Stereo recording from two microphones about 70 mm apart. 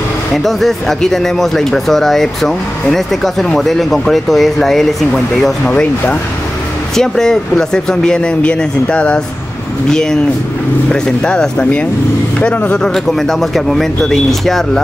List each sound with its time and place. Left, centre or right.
0.4 s speech: centre
5.7 s speech: centre